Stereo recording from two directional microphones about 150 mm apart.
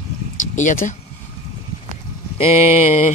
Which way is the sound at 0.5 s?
55° left (ahead or behind).